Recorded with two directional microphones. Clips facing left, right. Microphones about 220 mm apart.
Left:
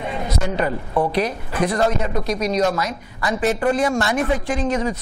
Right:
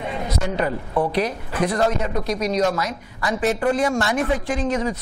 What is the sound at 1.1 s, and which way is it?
A woman's voice, 15° left (ahead or behind).